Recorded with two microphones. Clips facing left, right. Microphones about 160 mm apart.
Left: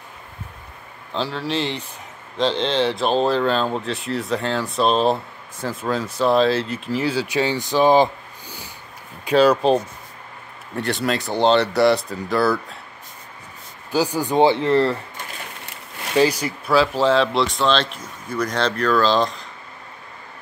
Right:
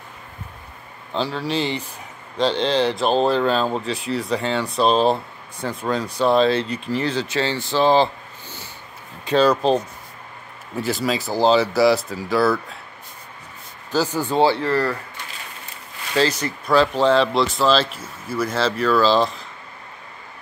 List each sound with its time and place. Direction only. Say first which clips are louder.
1.1 s speech: right 1 dB; centre (ahead or behind)
13.9 s speech: left 1 dB; 15° left (ahead or behind)
16.2 s speech: left 2 dB; 10° left (ahead or behind)